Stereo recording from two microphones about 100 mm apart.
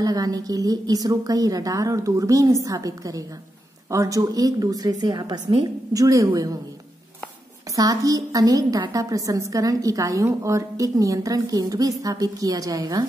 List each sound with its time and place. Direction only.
0.0 s a woman's voice: 40° right (ahead or behind)
7.7 s a woman's voice: 35° right (ahead or behind)